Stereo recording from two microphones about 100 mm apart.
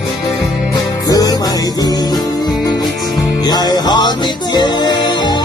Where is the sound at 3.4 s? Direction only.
45° left (ahead or behind).